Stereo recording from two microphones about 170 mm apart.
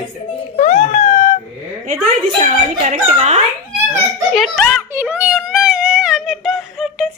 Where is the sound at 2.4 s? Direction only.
40° right (ahead or behind).